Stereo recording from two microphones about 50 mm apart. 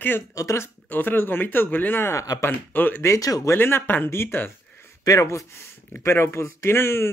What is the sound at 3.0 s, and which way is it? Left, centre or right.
Speech, left.